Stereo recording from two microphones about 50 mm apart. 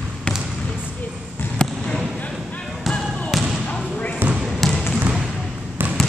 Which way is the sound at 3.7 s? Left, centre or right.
Left.